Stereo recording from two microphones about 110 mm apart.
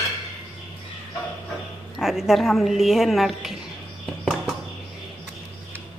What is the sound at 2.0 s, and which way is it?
A woman's voice, 5° right (ahead or behind).